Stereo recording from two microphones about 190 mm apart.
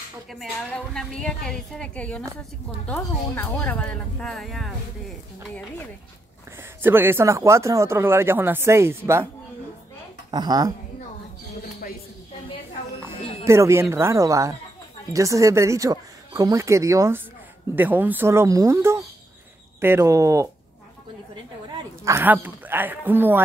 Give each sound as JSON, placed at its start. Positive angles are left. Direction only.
{"t": 0.3, "sound": "a woman's voice", "side_deg": 0}
{"t": 6.8, "sound": "speech", "side_deg": -10}
{"t": 10.3, "sound": "speech", "side_deg": -20}
{"t": 13.4, "sound": "speech", "side_deg": -15}
{"t": 22.0, "sound": "speech", "side_deg": -10}